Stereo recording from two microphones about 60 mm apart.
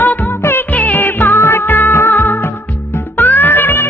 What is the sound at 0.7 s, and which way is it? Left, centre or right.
Music, left.